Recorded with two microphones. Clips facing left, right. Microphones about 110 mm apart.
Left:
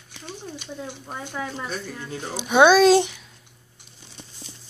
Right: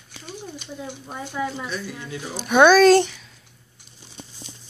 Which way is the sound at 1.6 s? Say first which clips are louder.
Right 1 dB; 40° left (ahead or behind).